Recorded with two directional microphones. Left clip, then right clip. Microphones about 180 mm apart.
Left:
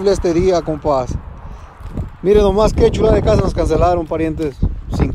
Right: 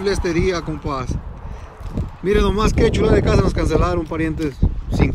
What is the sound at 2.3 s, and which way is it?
Speech, 30° left (ahead or behind).